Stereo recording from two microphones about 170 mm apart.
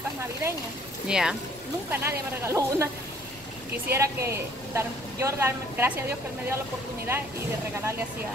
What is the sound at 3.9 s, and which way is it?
Speech, 15° right (ahead or behind).